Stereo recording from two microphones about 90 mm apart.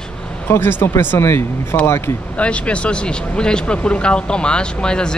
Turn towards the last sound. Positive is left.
turn(degrees=10)  # may be behind; listen again after turning